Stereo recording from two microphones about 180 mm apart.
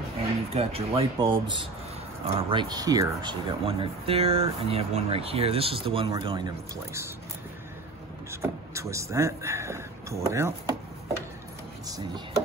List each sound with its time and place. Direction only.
0.5 s speech: 35° right (ahead or behind); by 7.1 s 15° right (ahead or behind)
8.3 s speech: 15° right (ahead or behind)